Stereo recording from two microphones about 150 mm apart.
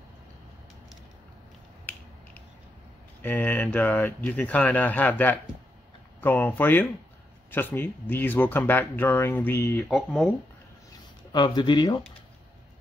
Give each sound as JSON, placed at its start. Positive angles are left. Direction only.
{"t": 3.2, "sound": "speech", "side_deg": 10}
{"t": 9.8, "sound": "speech", "side_deg": 0}
{"t": 10.9, "sound": "a sound", "side_deg": 30}